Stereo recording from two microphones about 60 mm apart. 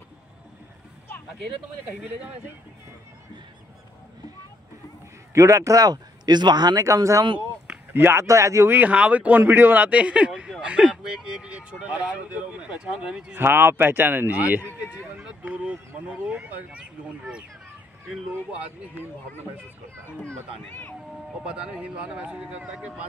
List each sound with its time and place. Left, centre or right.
5.3 s a man's voice: right
7.9 s speech: right
8.2 s speech: right
8.6 s speech: right
9.4 s speech: right
10.6 s a sound: right
11.3 s speech: centre
13.4 s speech: right
15.2 s a sound: right
16.7 s speech: centre
20.6 s speech: left
21.8 s speech: right